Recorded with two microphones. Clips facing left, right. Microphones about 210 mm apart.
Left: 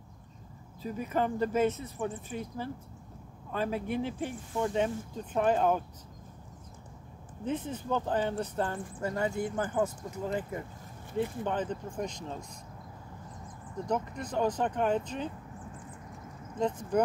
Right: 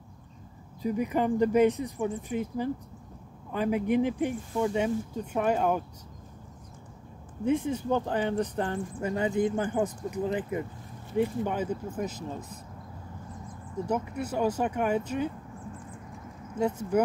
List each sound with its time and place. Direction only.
0.8 s speech: 15° right (ahead or behind)
7.4 s speech: 10° right (ahead or behind)
13.8 s speech: 10° right (ahead or behind)
16.5 s speech: 10° right (ahead or behind)